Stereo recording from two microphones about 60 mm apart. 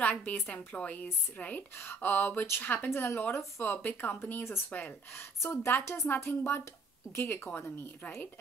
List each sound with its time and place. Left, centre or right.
0.0 s a woman's voice: left
3.7 s speech: left
4.7 s speech: left
5.4 s a woman's voice: left